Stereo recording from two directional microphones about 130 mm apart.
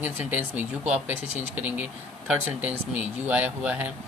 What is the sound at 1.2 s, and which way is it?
Speech, 55° right (ahead or behind).